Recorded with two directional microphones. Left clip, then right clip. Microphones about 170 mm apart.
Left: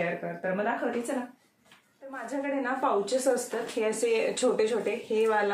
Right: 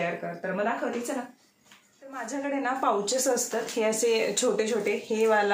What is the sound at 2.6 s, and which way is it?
Speech, 25° right (ahead or behind).